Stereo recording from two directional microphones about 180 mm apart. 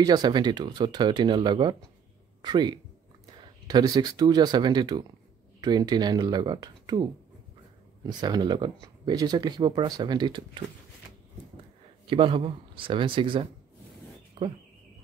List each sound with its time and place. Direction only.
0.0 s speech: 20° right (ahead or behind)
12.1 s speech: 30° right (ahead or behind)